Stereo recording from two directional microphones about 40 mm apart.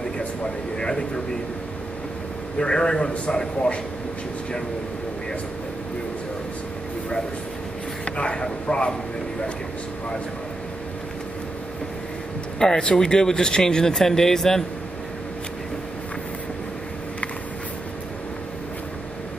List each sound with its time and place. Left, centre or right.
0.7 s a sound: centre
2.6 s a man's voice: left
8.0 s speech: left
12.5 s speech: centre